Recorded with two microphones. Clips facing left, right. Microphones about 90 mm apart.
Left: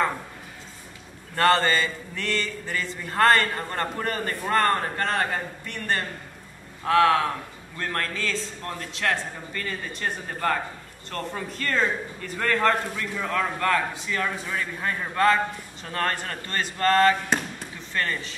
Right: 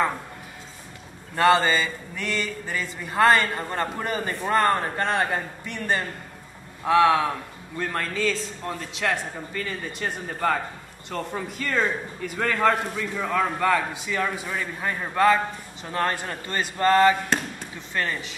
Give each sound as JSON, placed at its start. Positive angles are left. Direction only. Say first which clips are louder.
{"t": 1.3, "sound": "a man's voice", "louder": "right 1 dB", "side_deg": -10}
{"t": 17.9, "sound": "a man's voice", "louder": "even", "side_deg": -15}